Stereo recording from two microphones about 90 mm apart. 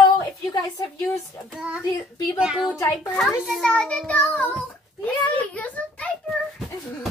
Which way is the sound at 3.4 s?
Centre (ahead or behind).